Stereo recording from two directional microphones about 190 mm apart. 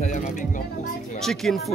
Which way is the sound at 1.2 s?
Centre (ahead or behind).